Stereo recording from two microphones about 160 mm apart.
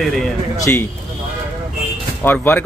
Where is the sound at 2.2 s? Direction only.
10° left (ahead or behind).